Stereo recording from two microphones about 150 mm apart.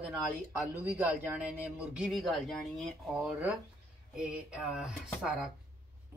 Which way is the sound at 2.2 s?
5° left (ahead or behind).